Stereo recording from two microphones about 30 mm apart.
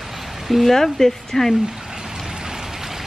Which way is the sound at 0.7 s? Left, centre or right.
Centre.